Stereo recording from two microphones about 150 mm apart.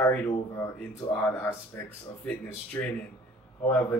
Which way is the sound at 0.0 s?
5° left (ahead or behind).